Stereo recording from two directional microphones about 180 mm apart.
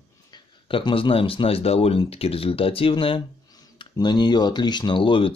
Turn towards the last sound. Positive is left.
turn(degrees=30)  # may be behind; listen again after turning